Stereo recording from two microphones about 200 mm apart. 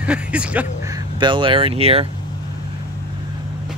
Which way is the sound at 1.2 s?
25° right (ahead or behind).